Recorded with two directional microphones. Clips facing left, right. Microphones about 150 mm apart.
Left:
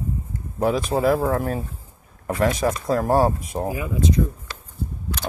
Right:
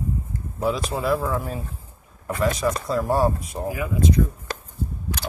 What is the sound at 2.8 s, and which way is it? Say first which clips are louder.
Speech: left 3 dB; 50° left (ahead or behind).